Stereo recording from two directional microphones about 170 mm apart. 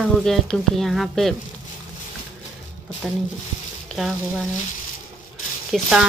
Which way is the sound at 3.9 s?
Centre (ahead or behind).